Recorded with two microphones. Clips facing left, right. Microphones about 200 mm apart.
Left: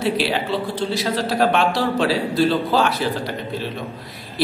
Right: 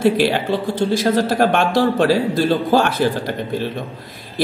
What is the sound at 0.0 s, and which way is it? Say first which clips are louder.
Speech: right 5 dB; 50° right (ahead or behind).